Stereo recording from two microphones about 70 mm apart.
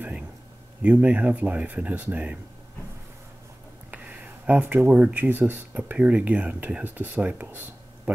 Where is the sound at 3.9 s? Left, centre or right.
Right.